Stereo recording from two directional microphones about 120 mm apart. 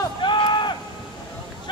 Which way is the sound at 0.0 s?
40° left (ahead or behind).